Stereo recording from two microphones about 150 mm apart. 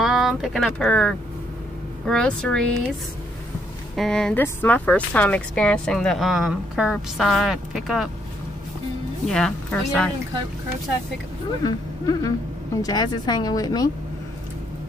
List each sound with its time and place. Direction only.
0.0 s speech: centre (ahead or behind)
3.9 s speech: 5° left (ahead or behind)
9.2 s speech: 5° left (ahead or behind)
11.6 s speech: 25° left (ahead or behind)